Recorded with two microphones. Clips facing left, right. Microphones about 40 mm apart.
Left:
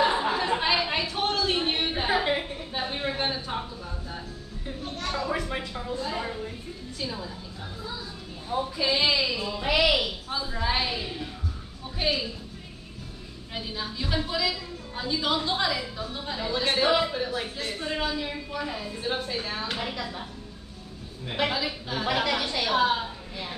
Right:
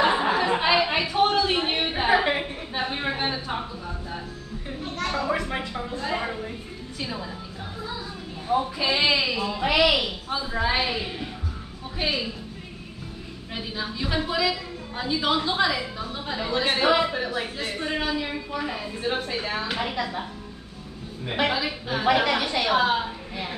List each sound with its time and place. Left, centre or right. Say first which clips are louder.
0.0 s a sound: right 3 dB; right
3.3 s a woman's voice: right 2 dB; centre
5.0 s a woman's voice: right 3 dB; right
5.9 s speech: right 2 dB; right
8.5 s a woman's voice: right 3 dB; right
12.0 s a woman's voice: right 1 dB; centre
13.6 s a woman's voice: right 2 dB; centre
19.9 s speech: right 5 dB; right
21.3 s a woman's voice: right 3 dB; centre